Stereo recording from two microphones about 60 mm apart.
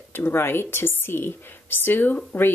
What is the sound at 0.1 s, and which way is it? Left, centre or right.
A woman's voice, left.